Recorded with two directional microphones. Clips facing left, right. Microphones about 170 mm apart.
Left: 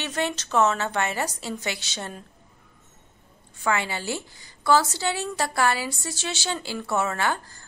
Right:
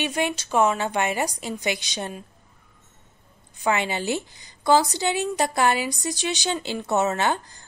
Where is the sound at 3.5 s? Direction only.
20° right (ahead or behind).